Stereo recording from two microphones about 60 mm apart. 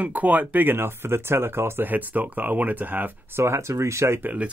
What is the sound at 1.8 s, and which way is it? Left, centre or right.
Speech, right.